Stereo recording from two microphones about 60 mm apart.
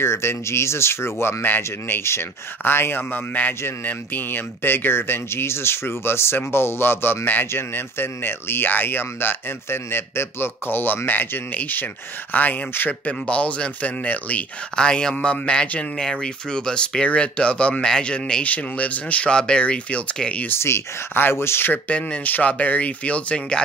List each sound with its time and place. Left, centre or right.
0.0 s speech: left
13.3 s speech: left
14.8 s speech: centre
20.4 s speech: left
21.8 s speech: left